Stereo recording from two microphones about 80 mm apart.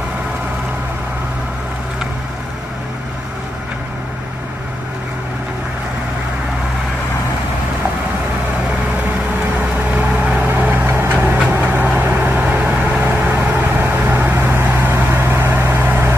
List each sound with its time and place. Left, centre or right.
9.9 s vehicle: centre